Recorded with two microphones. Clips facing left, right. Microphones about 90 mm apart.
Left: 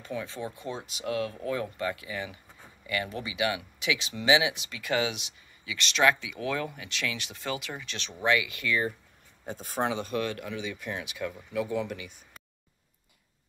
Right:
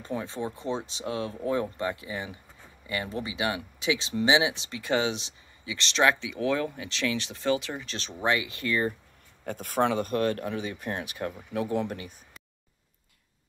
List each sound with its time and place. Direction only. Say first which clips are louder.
0.0 s speech: right 3 dB; 30° right (ahead or behind)
9.5 s speech: right 4 dB; 60° right (ahead or behind)